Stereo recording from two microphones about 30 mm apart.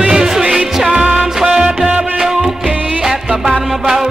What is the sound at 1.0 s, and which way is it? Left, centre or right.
Music, right.